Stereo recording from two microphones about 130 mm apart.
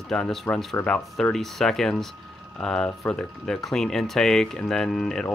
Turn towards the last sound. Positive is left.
turn(degrees=5)  # may be behind; listen again after turning